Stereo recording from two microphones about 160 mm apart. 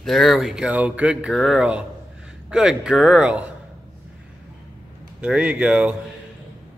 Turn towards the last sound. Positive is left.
turn(degrees=-5)  # may be behind; listen again after turning